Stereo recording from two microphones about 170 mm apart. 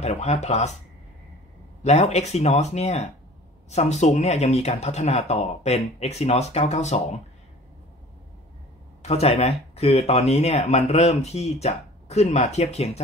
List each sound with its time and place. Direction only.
0.0 s speech: 40° left (ahead or behind)
1.8 s speech: 40° left (ahead or behind)
9.0 s speech: 35° left (ahead or behind)